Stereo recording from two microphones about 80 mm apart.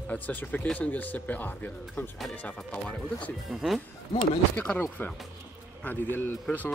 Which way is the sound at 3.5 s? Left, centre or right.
Centre.